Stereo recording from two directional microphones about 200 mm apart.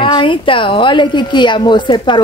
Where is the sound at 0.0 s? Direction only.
25° left (ahead or behind).